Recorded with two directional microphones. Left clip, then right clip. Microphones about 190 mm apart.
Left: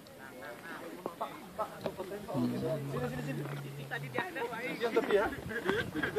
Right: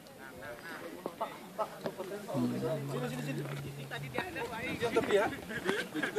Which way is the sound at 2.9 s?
50° right (ahead or behind).